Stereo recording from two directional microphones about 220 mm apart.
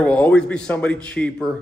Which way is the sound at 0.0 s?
5° left (ahead or behind).